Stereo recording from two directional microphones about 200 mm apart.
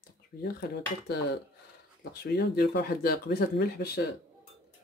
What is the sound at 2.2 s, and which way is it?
Speech, 50° left (ahead or behind).